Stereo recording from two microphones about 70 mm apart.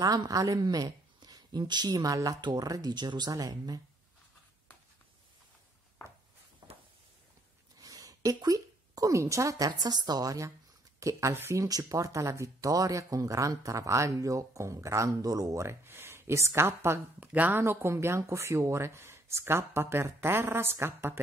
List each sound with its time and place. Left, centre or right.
0.0 s speech: right
6.6 s a sound: right
7.8 s a sound: right
8.4 s speech: right
9.7 s speech: right
11.0 s speech: right
11.6 s speech: right
17.2 s speech: right